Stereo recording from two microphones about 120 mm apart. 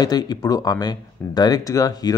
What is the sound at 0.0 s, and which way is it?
Speech, 35° left (ahead or behind).